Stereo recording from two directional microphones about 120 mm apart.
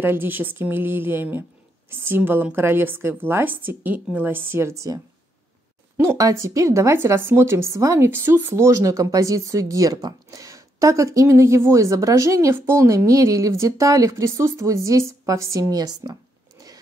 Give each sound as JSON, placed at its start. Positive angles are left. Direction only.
{"t": 0.0, "sound": "a woman's voice", "side_deg": -20}